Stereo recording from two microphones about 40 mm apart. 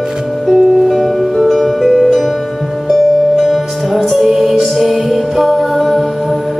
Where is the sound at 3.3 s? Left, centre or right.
Centre.